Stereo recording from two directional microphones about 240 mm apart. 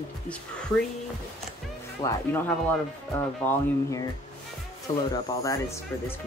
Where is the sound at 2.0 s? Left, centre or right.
Centre.